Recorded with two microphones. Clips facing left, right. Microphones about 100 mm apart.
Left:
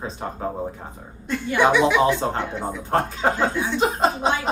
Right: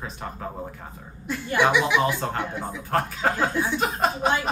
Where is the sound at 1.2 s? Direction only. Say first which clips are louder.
Left 2 dB; 5° right (ahead or behind).